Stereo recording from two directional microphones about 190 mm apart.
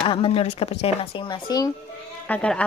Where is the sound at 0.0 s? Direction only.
25° left (ahead or behind).